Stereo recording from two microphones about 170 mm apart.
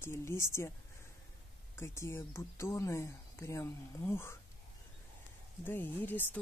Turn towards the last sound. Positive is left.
turn(degrees=10)  # may be behind; listen again after turning